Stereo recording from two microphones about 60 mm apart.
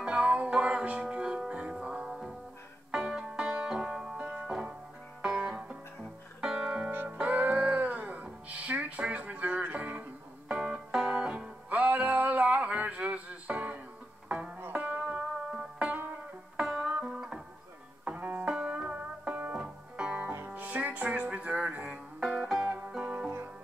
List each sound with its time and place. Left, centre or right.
0.0 s music: centre
3.6 s banjo: centre
4.2 s music: right
4.5 s music: centre
6.9 s music: right; by 22.3 s centre
22.3 s music: centre
22.9 s music: right